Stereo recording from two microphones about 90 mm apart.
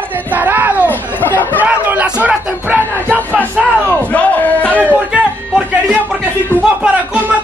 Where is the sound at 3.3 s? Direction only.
15° left (ahead or behind).